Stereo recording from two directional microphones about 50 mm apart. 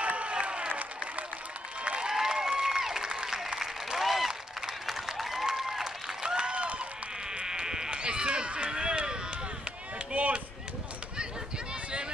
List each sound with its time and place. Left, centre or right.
0.0 s applause: right
1.9 s applause: centre
6.2 s a sound: centre
7.3 s sheep: centre
10.1 s chop: right